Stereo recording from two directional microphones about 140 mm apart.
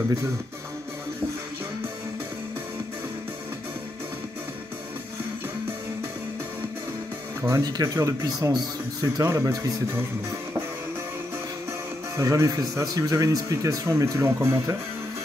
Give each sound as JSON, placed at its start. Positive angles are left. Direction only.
{"t": 7.4, "sound": "speech", "side_deg": -25}
{"t": 12.2, "sound": "speech", "side_deg": -25}